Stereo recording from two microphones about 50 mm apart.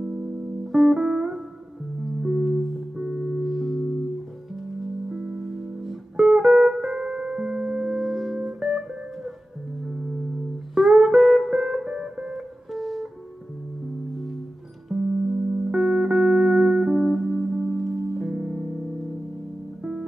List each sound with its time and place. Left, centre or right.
0.7 s music: centre
3.0 s music: centre
3.4 s music: centre
5.1 s music: right
5.9 s guitar: centre
7.2 s singing bowl: centre
8.0 s music: centre
12.7 s music: centre
15.0 s music: right; by 18.3 s centre
18.3 s music: right
19.8 s guitar: centre